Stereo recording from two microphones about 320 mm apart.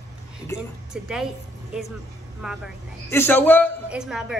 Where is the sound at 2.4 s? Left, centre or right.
Centre.